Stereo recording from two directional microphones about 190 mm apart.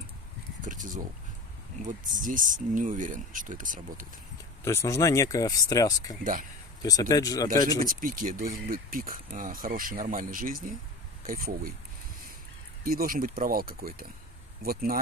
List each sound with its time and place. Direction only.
0.7 s a sound: 45° right (ahead or behind)
1.8 s speech: 45° right (ahead or behind)
4.6 s speech: 15° left (ahead or behind)
7.8 s speech: 45° right (ahead or behind)
12.8 s speech: 50° right (ahead or behind)